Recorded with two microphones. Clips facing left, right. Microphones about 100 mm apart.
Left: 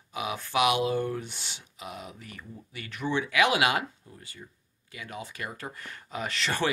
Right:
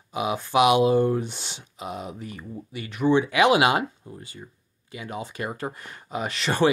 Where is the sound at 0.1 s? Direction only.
25° right (ahead or behind).